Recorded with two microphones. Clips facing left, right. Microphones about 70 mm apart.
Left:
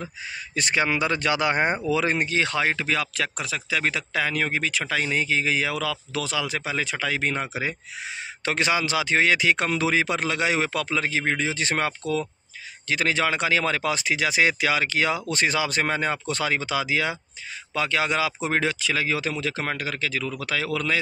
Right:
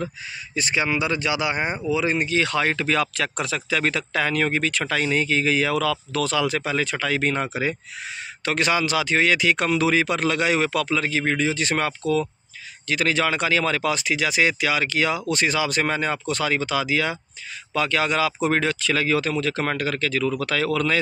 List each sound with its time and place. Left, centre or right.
0.6 s speech: left
2.6 s speech: centre
8.5 s speech: left